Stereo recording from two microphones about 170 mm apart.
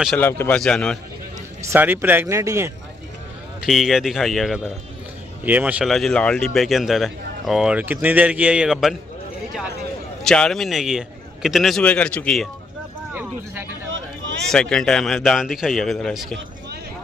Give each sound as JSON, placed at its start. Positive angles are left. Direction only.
{"t": 0.2, "sound": "a man's voice", "side_deg": 15}
{"t": 1.6, "sound": "speech", "side_deg": -15}
{"t": 3.6, "sound": "speech", "side_deg": 0}
{"t": 5.4, "sound": "speech", "side_deg": -10}
{"t": 10.2, "sound": "speech", "side_deg": 5}
{"t": 13.1, "sound": "a sound", "side_deg": -10}
{"t": 13.8, "sound": "vehicle", "side_deg": -90}
{"t": 14.5, "sound": "speech", "side_deg": 5}